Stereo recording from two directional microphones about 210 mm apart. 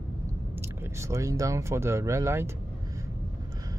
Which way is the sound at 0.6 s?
10° right (ahead or behind).